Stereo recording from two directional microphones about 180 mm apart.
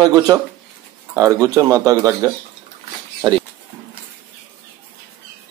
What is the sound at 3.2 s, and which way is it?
Speech, 25° right (ahead or behind).